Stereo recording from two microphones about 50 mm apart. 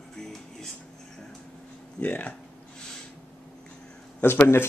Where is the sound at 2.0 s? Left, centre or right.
Left.